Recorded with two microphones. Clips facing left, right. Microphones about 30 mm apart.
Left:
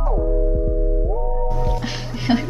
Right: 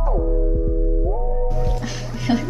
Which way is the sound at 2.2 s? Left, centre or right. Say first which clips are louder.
Left 1 dB; left.